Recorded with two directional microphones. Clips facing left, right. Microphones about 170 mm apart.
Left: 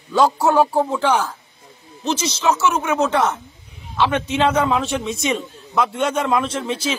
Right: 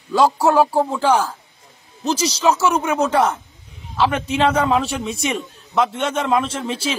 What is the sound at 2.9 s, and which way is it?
Speech, 10° right (ahead or behind).